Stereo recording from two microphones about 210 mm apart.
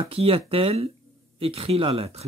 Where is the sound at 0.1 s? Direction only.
25° right (ahead or behind).